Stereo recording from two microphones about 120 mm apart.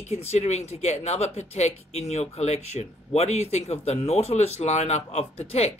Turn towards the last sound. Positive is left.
turn(degrees=60)  # may be behind; listen again after turning